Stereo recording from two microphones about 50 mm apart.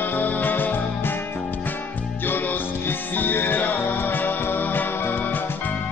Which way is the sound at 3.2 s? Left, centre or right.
Left.